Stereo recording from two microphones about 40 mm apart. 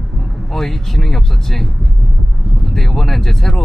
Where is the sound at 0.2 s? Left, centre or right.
Centre.